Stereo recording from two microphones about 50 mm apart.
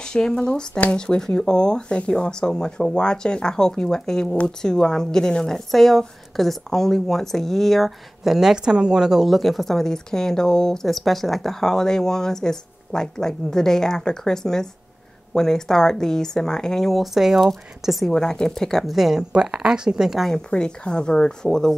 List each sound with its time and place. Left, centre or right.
0.0 s a woman's voice: centre
8.2 s a woman's voice: centre
18.1 s a woman's voice: centre
18.9 s a woman's voice: centre
20.2 s a woman's voice: centre